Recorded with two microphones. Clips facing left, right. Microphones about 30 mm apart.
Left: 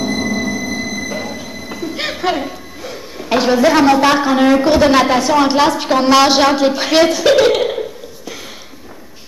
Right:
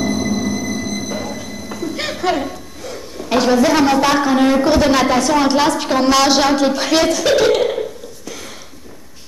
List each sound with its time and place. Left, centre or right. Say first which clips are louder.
1.1 s speech: left 1 dB; centre